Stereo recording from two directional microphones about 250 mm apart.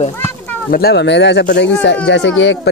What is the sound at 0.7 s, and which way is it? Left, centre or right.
Speech, left.